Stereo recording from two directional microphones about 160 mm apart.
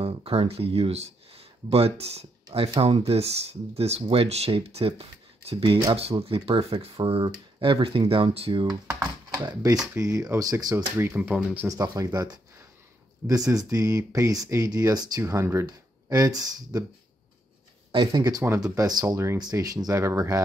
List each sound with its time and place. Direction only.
0.0 s speech: 35° right (ahead or behind)
11.1 s speech: 10° right (ahead or behind)
11.7 s speech: 25° right (ahead or behind)
17.9 s speech: 25° right (ahead or behind)